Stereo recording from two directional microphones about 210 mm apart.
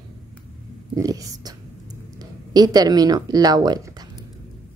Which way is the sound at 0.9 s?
15° right (ahead or behind).